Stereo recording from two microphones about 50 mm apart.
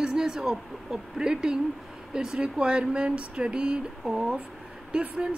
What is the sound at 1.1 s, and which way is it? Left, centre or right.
Speech, centre.